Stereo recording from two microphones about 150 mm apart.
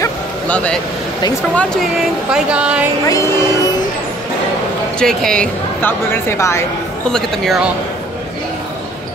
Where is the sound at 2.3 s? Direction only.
5° right (ahead or behind).